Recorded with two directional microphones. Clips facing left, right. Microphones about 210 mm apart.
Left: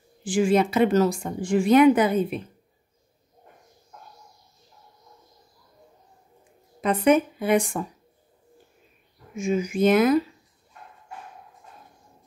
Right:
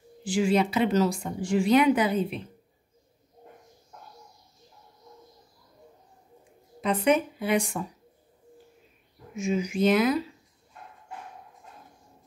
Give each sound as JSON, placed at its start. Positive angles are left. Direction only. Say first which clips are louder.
{"t": 0.2, "sound": "a woman's voice", "louder": "left 3 dB", "side_deg": 50}
{"t": 6.8, "sound": "a woman's voice", "louder": "left 4 dB", "side_deg": 50}
{"t": 9.3, "sound": "a woman's voice", "louder": "left 3 dB", "side_deg": 50}